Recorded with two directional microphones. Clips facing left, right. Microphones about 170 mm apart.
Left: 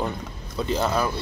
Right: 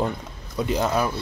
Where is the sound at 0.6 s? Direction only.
15° right (ahead or behind).